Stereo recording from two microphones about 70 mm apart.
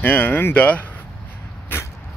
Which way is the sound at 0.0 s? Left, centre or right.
Left.